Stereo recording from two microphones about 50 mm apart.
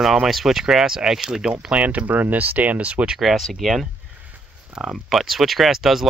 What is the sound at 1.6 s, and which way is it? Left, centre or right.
Speech, right.